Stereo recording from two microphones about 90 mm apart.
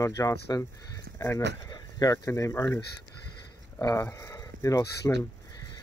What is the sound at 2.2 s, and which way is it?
Speech, 35° left (ahead or behind).